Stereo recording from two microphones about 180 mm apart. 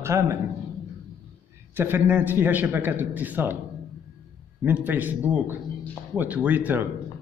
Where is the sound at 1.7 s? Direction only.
10° right (ahead or behind).